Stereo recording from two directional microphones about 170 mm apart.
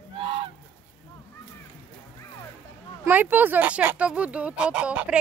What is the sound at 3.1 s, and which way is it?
Speech, 10° right (ahead or behind).